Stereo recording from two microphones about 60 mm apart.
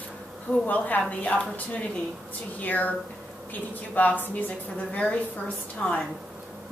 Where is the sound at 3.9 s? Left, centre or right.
Left.